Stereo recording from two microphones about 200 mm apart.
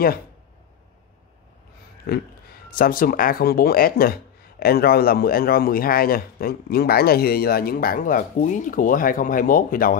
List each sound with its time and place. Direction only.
2.1 s speech: 50° left (ahead or behind)